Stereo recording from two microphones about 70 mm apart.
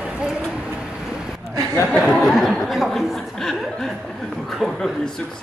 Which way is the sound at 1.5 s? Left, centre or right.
Right.